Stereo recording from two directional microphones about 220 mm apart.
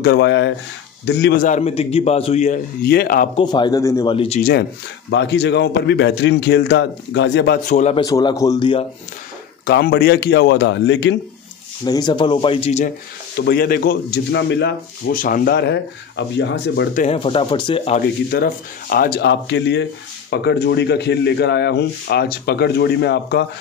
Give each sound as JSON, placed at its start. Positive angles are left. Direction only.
{"t": 0.0, "sound": "a man's voice", "side_deg": 50}
{"t": 3.3, "sound": "speech", "side_deg": 20}
{"t": 4.4, "sound": "a man's voice", "side_deg": 40}
{"t": 5.1, "sound": "speech", "side_deg": 50}
{"t": 7.7, "sound": "a man's voice", "side_deg": 30}
{"t": 8.0, "sound": "speech", "side_deg": 20}
{"t": 9.7, "sound": "speech", "side_deg": 45}
{"t": 11.8, "sound": "speech", "side_deg": 20}
{"t": 13.5, "sound": "speech", "side_deg": 45}
{"t": 16.9, "sound": "speech", "side_deg": 30}
{"t": 18.3, "sound": "speech", "side_deg": 45}